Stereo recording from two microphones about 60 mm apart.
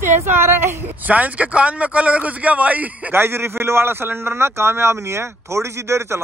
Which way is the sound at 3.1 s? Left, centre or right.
Right.